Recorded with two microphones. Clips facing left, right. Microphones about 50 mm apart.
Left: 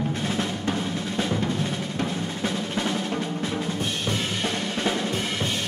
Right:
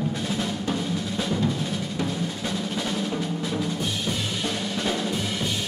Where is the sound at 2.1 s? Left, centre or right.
Left.